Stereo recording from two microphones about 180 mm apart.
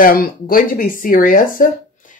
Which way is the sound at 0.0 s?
55° left (ahead or behind).